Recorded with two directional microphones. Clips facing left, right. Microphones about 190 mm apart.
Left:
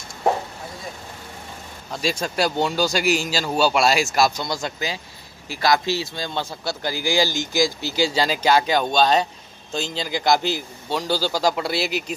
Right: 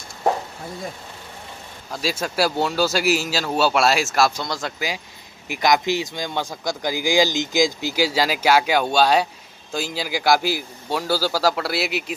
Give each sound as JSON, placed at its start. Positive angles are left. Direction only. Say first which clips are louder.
{"t": 1.9, "sound": "a man's voice", "louder": "left 1 dB", "side_deg": -5}
{"t": 5.5, "sound": "speech", "louder": "right 1 dB", "side_deg": -20}